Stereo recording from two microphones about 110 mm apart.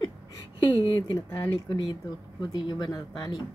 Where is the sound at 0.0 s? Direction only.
40° left (ahead or behind).